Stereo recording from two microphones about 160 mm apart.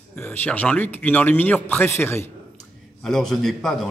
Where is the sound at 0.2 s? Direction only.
10° left (ahead or behind).